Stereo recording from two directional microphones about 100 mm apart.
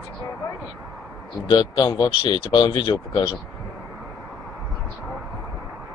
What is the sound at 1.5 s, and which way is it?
Speech, 50° left (ahead or behind).